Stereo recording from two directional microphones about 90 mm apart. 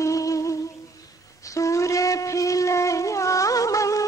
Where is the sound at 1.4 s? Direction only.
35° left (ahead or behind).